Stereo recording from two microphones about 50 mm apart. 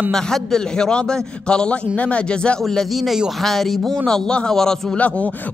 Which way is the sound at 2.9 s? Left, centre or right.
Centre.